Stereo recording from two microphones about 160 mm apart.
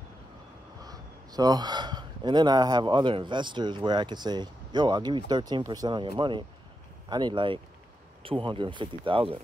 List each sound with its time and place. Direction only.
0.8 s speech: 25° right (ahead or behind)